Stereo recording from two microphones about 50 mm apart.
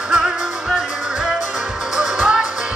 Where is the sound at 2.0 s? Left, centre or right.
Centre.